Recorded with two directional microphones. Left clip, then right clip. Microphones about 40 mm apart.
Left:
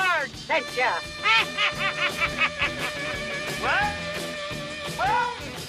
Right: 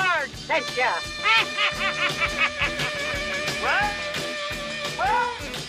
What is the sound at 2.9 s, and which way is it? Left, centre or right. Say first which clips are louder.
Music: right 3 dB; right.